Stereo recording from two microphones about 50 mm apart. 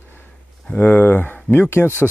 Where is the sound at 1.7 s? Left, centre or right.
Left.